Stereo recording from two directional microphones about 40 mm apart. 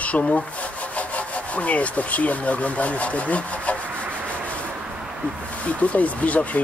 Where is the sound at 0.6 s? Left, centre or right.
Left.